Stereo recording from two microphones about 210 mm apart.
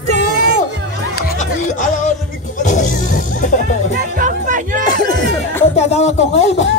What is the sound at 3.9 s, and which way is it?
Music, 40° right (ahead or behind).